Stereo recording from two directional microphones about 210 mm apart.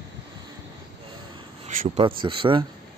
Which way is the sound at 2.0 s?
25° right (ahead or behind).